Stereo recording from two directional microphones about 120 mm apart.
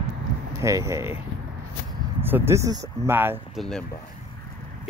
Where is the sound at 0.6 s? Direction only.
25° right (ahead or behind).